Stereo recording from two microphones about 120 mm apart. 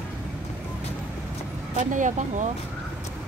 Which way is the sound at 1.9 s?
90° right.